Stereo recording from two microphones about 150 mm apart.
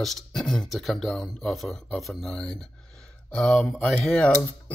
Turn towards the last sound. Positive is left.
turn(degrees=5)  # may be behind; listen again after turning